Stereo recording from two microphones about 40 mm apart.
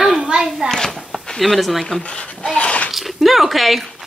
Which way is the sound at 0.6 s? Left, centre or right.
Centre.